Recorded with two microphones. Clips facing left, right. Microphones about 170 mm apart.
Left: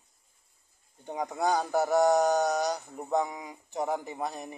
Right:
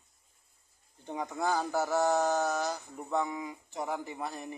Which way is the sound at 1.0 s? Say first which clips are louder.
Left 3 dB; 15° left (ahead or behind).